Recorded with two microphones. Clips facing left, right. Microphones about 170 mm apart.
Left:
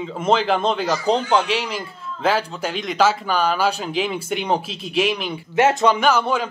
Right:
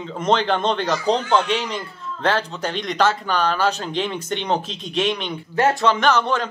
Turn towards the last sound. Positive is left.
turn(degrees=10)  # may be behind; listen again after turning